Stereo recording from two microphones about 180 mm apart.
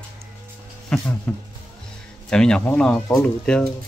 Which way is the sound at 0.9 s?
5° left (ahead or behind).